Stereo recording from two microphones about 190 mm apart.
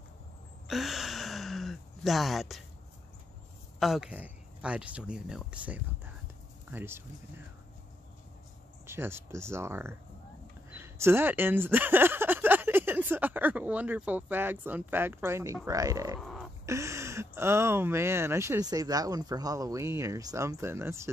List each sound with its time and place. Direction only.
0.7 s gasp: centre (ahead or behind)
3.8 s speech: centre (ahead or behind)
8.8 s speech: 15° right (ahead or behind)
16.2 s a sound: centre (ahead or behind)
16.6 s speech: 15° right (ahead or behind)